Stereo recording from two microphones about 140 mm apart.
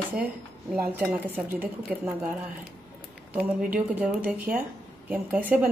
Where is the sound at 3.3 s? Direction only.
10° right (ahead or behind).